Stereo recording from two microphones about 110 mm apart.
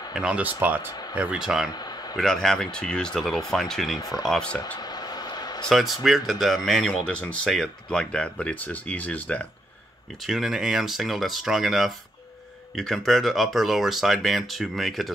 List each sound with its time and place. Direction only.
0.1 s speech: 10° right (ahead or behind)
0.8 s speech: 40° left (ahead or behind)
1.1 s speech: 10° right (ahead or behind)
1.7 s a sound: 40° left (ahead or behind)
2.1 s speech: 5° left (ahead or behind)
4.7 s a sound: 40° left (ahead or behind)
5.7 s speech: centre (ahead or behind)
10.2 s speech: centre (ahead or behind)